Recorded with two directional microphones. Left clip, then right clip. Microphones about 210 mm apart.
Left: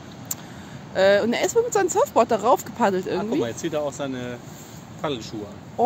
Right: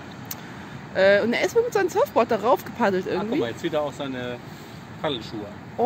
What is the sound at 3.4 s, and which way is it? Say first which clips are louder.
Speech: even; 55° left (ahead or behind).